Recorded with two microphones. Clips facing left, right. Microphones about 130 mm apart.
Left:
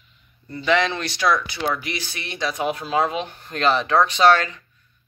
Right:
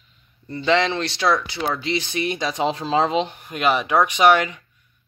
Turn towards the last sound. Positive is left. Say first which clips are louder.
# even
turn(degrees=-15)  # may be behind; listen again after turning